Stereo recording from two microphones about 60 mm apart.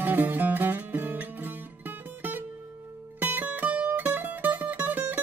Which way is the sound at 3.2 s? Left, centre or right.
Right.